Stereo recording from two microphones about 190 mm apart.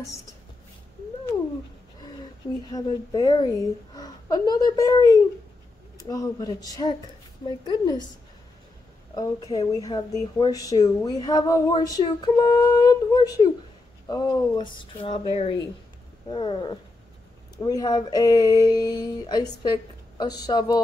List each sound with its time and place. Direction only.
2.7 s speech: 20° left (ahead or behind)
9.1 s speech: 20° left (ahead or behind)